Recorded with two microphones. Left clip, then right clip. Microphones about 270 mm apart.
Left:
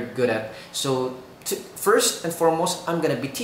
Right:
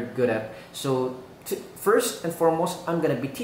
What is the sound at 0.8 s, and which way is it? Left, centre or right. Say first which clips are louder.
Speech: even; centre.